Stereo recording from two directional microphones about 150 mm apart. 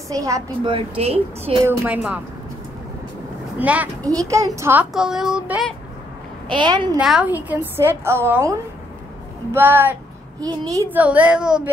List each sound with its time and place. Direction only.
0.1 s a child's voice: 20° right (ahead or behind)
0.7 s speech: 40° right (ahead or behind)
3.5 s a woman's voice: 10° right (ahead or behind)
4.0 s a child's voice: 20° right (ahead or behind)
4.9 s speech: 5° right (ahead or behind)
6.5 s a child's voice: 30° right (ahead or behind)
7.0 s a woman's voice: 5° right (ahead or behind)
10.4 s a child's voice: 25° right (ahead or behind)
11.0 s a woman's voice: 10° right (ahead or behind)